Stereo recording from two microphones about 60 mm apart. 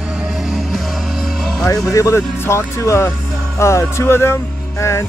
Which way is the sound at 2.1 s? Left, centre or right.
Left.